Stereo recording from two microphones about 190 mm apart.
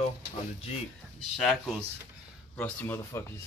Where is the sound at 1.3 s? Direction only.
Centre (ahead or behind).